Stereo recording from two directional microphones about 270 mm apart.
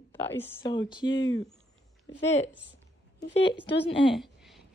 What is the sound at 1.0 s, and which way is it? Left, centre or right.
Speech, left.